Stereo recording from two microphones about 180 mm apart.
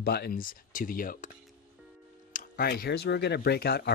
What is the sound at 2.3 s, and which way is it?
Speech, 55° left (ahead or behind).